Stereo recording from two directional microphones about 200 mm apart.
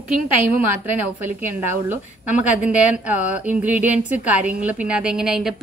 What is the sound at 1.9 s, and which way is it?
A woman's voice, 5° right (ahead or behind).